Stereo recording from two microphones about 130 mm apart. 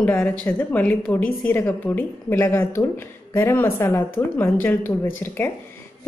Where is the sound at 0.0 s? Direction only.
15° left (ahead or behind).